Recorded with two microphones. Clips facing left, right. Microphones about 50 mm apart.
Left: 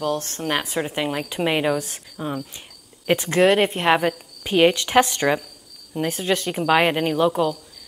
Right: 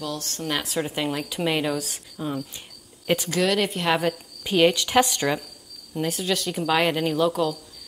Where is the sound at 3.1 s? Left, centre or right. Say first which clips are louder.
Left 5 dB; left.